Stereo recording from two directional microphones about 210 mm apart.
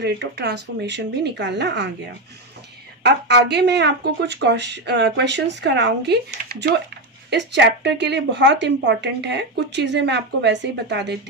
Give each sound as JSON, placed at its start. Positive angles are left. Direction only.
{"t": 0.0, "sound": "speech", "side_deg": -50}
{"t": 3.0, "sound": "a woman's voice", "side_deg": -55}